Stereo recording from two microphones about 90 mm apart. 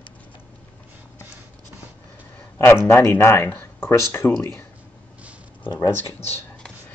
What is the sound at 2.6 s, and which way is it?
Speech, 30° left (ahead or behind).